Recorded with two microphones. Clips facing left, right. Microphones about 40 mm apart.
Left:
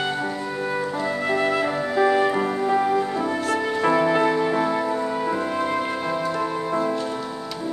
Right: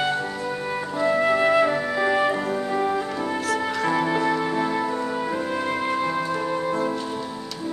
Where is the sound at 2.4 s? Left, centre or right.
Centre.